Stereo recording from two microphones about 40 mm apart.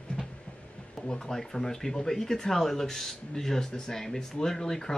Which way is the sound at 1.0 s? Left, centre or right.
Centre.